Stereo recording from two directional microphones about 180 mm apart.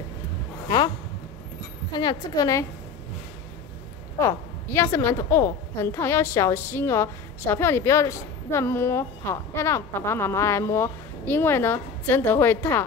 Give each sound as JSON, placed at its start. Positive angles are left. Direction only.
{"t": 1.9, "sound": "a woman's voice", "side_deg": 20}
{"t": 4.2, "sound": "a woman's voice", "side_deg": 15}